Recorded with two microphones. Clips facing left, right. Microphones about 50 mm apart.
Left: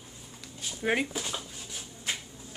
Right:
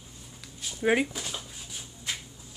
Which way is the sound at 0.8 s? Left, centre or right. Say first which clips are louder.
Right 3 dB; centre.